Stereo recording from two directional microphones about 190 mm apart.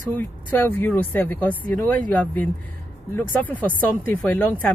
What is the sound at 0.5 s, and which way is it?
Speech, 10° left (ahead or behind).